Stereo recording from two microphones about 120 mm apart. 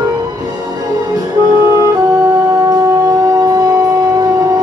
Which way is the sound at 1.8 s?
20° right (ahead or behind).